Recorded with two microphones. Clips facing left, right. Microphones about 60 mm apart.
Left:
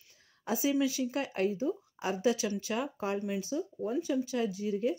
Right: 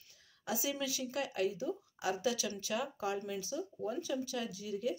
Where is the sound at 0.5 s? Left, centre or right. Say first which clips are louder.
Left 8 dB; left.